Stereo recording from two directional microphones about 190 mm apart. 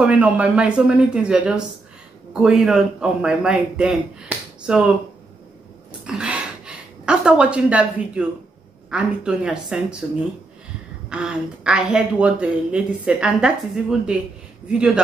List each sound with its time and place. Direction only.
0.0 s speech: 5° right (ahead or behind)
6.0 s a woman's voice: 5° right (ahead or behind)
11.1 s speech: 5° right (ahead or behind)